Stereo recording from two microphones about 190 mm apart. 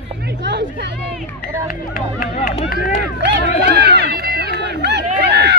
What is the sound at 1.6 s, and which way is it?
Speech, 45° left (ahead or behind).